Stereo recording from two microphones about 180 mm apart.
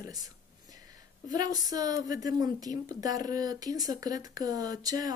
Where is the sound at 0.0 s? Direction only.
20° right (ahead or behind).